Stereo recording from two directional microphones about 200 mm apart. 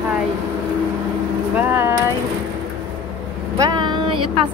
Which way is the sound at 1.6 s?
10° right (ahead or behind).